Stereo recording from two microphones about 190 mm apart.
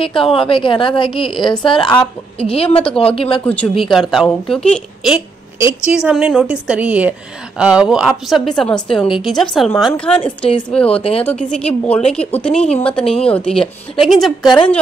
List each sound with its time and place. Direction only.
0.0 s a woman's voice: 30° left (ahead or behind)
3.4 s a woman's voice: 5° left (ahead or behind)